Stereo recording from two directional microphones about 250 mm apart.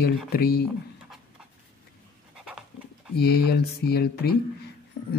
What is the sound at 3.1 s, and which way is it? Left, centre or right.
Speech, left.